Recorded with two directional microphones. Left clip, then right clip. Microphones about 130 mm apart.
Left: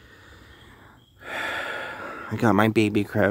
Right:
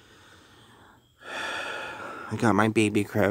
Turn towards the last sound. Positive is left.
turn(degrees=-10)  # may be behind; listen again after turning